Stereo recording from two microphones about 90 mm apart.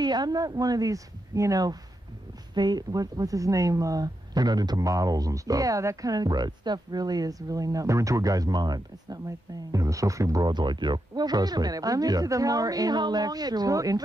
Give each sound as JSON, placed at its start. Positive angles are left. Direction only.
{"t": 0.0, "sound": "speech", "side_deg": -50}